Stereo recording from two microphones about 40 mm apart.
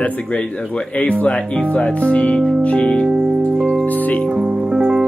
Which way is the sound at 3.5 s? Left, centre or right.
Centre.